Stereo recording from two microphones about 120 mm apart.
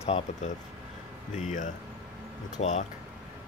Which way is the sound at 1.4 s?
90° left.